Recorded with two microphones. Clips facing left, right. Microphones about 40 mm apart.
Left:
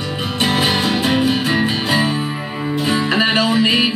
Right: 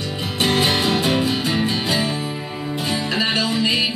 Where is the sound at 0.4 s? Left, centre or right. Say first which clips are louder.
Left 1 dB; centre.